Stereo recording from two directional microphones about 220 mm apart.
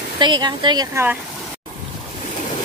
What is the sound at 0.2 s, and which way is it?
Speech, 20° right (ahead or behind).